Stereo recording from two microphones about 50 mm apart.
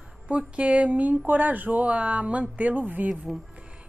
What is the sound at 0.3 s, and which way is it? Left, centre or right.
A woman's voice, right.